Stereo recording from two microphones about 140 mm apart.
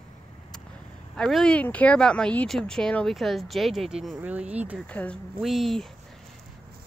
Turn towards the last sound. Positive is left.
turn(degrees=0)  # may be behind; listen again after turning